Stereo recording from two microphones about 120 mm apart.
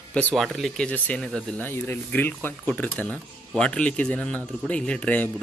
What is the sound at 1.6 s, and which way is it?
Speech, 20° left (ahead or behind).